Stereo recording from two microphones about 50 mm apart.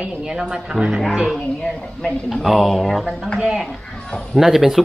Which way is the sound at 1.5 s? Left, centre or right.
Centre.